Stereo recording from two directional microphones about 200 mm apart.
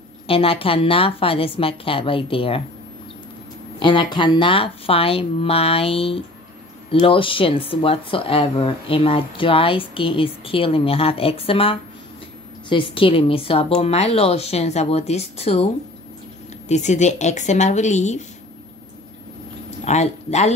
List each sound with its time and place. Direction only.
0.3 s speech: 30° left (ahead or behind)
3.8 s speech: 25° left (ahead or behind)
19.8 s speech: 35° left (ahead or behind)